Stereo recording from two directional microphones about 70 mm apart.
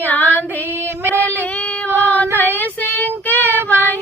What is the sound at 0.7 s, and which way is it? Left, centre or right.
Female singing, right.